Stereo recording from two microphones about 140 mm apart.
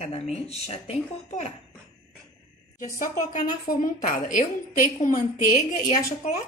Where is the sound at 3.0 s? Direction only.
75° left (ahead or behind).